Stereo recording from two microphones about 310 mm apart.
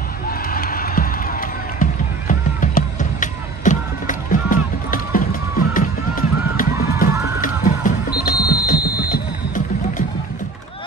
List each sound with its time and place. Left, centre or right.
0.3 s run: left
7.4 s music: left